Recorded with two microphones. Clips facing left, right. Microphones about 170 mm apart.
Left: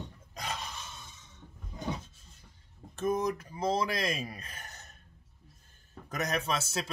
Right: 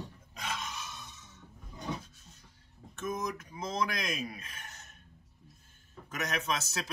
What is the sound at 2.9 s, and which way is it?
A man's voice, 35° left (ahead or behind).